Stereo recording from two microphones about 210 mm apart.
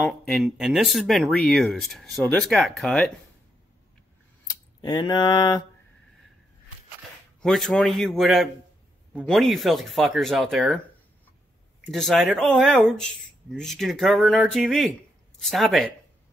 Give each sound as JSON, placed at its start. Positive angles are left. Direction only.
{"t": 0.3, "sound": "speech", "side_deg": 0}
{"t": 4.5, "sound": "speech", "side_deg": 20}
{"t": 7.4, "sound": "speech", "side_deg": 0}
{"t": 11.9, "sound": "speech", "side_deg": 0}